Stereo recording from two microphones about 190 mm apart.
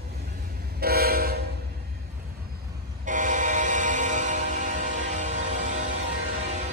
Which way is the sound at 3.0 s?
40° right (ahead or behind).